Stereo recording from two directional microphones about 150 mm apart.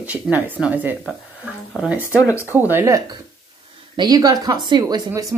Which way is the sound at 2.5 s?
15° right (ahead or behind).